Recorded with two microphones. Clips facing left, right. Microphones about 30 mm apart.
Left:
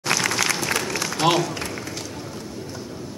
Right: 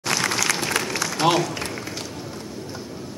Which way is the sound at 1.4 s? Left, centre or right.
Centre.